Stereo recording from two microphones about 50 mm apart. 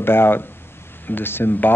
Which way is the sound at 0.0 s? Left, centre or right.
Left.